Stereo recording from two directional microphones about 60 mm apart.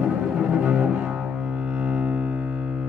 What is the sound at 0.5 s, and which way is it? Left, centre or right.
Double bass, centre.